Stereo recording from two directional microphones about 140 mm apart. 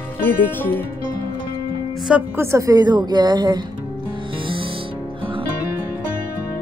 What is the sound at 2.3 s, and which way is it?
A woman's voice, 20° right (ahead or behind).